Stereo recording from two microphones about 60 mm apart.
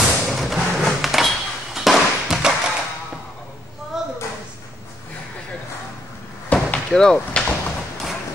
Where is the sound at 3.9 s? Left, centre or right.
Centre.